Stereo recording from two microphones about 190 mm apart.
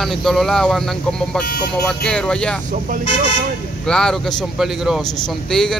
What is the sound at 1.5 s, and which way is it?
Speech, 55° left (ahead or behind).